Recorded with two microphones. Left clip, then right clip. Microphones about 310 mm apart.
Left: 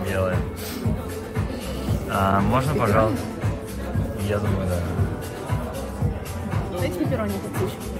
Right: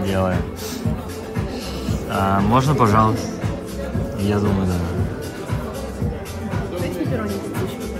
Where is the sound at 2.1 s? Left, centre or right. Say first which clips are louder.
Right 3 dB; centre.